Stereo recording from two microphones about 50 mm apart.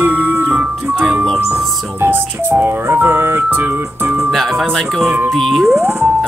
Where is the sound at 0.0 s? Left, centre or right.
Right.